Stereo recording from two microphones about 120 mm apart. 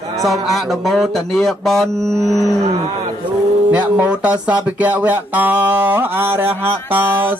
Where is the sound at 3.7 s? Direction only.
10° right (ahead or behind).